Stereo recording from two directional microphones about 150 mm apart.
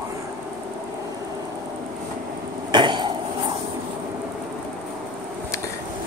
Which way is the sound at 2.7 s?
30° right (ahead or behind).